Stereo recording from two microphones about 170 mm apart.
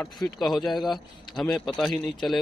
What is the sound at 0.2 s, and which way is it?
A man's voice, centre (ahead or behind).